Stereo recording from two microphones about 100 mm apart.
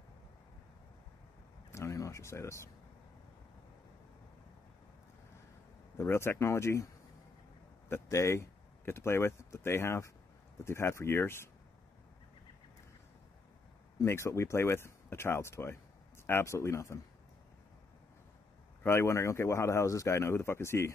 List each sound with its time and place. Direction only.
1.7 s speech: 30° left (ahead or behind)
5.9 s speech: 25° left (ahead or behind)
7.9 s speech: 30° left (ahead or behind)
14.0 s speech: 25° left (ahead or behind)
18.8 s speech: 25° left (ahead or behind)